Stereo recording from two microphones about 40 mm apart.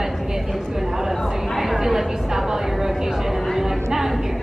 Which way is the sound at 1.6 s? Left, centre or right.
Centre.